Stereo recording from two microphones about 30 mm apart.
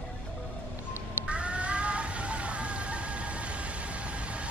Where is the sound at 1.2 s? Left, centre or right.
Right.